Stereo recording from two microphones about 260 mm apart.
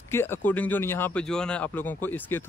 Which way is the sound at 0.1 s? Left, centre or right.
Centre.